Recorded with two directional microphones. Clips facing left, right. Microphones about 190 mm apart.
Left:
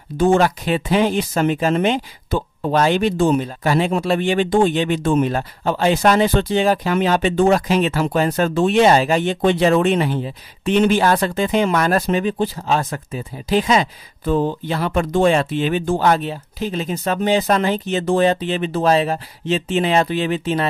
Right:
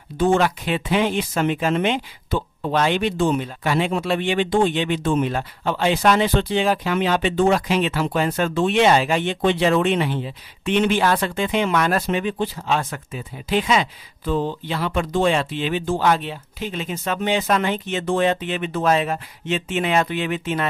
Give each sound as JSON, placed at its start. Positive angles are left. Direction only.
{"t": 0.2, "sound": "speech", "side_deg": 45}